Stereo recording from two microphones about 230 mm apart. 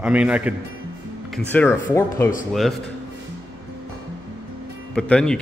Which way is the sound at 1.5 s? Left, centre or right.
Centre.